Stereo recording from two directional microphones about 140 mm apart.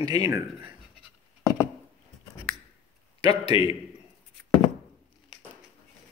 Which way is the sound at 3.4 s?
45° left (ahead or behind).